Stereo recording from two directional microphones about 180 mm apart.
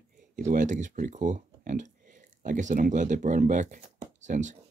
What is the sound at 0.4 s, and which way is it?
Speech, 45° right (ahead or behind).